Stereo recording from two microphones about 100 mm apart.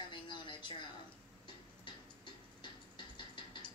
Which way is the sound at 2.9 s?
55° left (ahead or behind).